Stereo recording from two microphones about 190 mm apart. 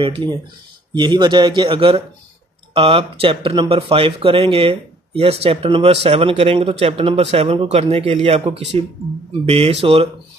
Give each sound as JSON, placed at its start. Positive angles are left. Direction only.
{"t": 0.0, "sound": "speech", "side_deg": -25}